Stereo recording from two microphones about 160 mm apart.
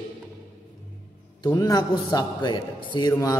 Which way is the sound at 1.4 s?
25° left (ahead or behind).